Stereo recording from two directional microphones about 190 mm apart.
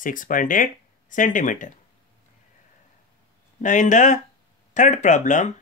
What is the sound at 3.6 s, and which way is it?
Speech, 40° left (ahead or behind).